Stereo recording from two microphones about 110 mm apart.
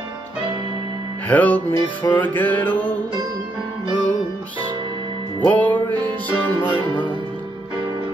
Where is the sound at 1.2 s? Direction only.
15° left (ahead or behind).